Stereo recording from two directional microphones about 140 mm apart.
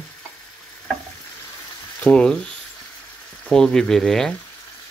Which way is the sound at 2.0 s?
5° left (ahead or behind).